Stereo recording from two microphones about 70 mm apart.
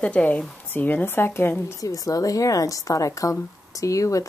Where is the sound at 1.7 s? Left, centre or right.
Left.